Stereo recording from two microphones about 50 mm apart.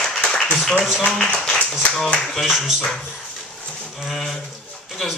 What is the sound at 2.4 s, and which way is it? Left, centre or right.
Speech, centre.